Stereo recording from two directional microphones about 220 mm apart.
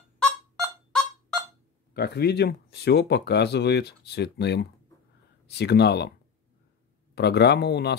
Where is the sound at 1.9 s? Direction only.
45° left (ahead or behind).